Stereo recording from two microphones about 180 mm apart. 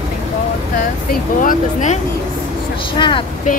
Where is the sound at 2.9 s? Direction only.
25° left (ahead or behind).